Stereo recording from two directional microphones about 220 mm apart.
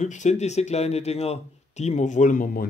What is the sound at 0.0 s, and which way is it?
Speech, 30° left (ahead or behind).